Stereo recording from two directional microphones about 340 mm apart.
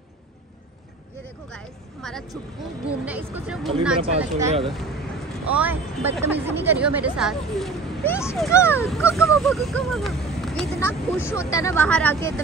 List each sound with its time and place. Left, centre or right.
1.5 s speech: centre
4.0 s speech: centre
5.5 s speech: centre